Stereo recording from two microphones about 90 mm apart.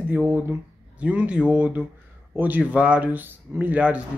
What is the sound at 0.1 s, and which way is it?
Speech, 25° right (ahead or behind).